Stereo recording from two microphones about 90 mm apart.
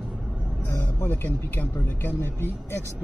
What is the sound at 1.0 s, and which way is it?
Speech, 20° left (ahead or behind).